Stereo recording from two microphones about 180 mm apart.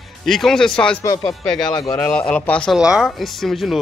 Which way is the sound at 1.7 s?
20° left (ahead or behind).